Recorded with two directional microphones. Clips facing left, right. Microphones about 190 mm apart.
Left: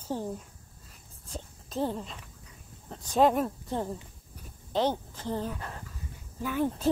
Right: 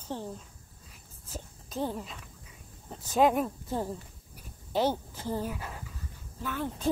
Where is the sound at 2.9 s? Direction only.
5° right (ahead or behind).